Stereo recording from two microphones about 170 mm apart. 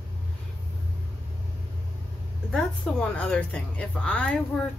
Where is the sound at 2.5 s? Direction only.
5° left (ahead or behind).